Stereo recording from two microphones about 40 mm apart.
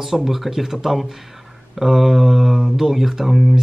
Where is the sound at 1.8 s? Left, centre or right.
Centre.